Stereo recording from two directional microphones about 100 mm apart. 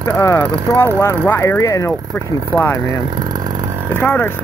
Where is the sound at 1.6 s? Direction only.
35° left (ahead or behind).